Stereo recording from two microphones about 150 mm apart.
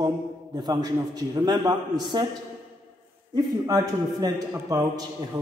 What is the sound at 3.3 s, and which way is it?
A man's voice, 25° right (ahead or behind).